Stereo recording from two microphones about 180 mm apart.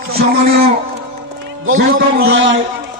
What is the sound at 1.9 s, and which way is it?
Speech, 60° right (ahead or behind).